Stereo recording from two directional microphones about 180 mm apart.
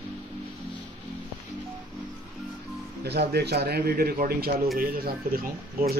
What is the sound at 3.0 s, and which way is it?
Speech, 65° right (ahead or behind).